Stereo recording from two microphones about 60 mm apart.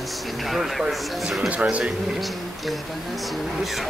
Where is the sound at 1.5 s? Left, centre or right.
Right.